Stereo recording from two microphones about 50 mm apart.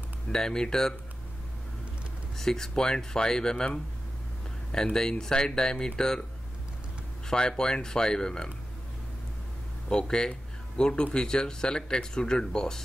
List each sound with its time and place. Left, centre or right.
0.3 s speech: centre
2.3 s speech: centre
4.9 s speech: centre
7.2 s speech: centre
9.8 s speech: centre